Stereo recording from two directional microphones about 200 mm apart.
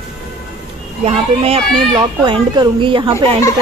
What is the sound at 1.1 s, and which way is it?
A woman's voice, 30° right (ahead or behind).